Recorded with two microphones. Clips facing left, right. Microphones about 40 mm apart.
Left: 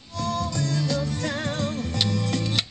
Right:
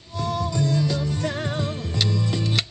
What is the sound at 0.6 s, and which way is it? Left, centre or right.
Music, left.